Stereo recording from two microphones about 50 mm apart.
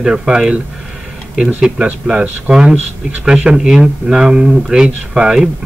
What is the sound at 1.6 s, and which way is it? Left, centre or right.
Speech, centre.